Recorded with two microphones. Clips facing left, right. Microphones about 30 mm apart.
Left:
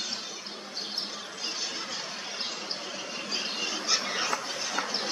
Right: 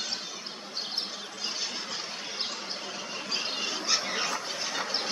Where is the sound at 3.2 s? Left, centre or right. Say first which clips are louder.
Right 1 dB; centre.